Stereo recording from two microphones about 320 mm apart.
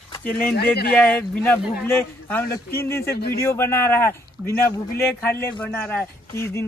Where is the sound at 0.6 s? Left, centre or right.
Left.